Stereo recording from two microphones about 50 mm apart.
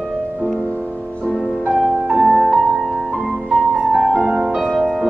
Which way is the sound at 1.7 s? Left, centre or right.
Centre.